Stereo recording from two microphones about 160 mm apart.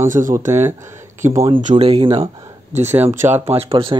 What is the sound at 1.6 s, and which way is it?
Speech, 40° right (ahead or behind).